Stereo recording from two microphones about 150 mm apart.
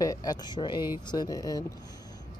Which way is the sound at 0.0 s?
25° left (ahead or behind).